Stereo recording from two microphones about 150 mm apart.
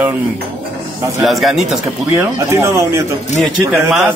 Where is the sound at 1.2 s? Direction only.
Centre (ahead or behind).